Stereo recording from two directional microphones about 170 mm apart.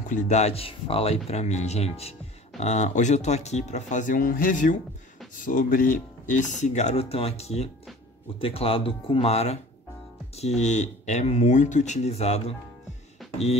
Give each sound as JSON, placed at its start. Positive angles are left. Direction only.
{"t": 0.1, "sound": "speech", "side_deg": 45}
{"t": 13.2, "sound": "music", "side_deg": 0}